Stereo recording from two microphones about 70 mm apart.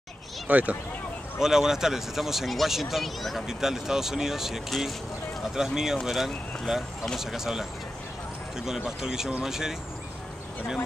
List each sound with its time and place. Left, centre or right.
0.5 s speech: right
1.4 s speech: centre